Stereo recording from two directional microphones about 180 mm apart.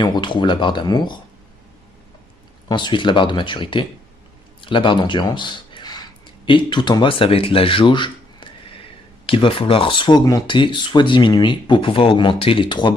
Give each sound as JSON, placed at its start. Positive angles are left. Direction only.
{"t": 0.0, "sound": "speech", "side_deg": 25}
{"t": 2.7, "sound": "speech", "side_deg": 25}